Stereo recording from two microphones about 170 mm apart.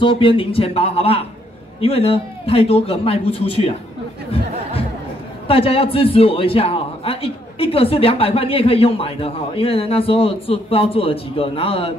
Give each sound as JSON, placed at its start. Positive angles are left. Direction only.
{"t": 0.0, "sound": "speech", "side_deg": 30}
{"t": 5.5, "sound": "speech", "side_deg": 35}